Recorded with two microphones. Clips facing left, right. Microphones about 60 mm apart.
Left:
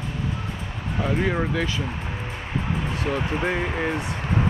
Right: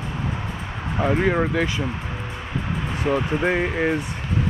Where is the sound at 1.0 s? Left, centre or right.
Right.